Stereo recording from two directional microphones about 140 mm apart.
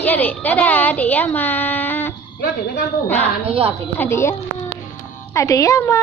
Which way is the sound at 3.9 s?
20° left (ahead or behind).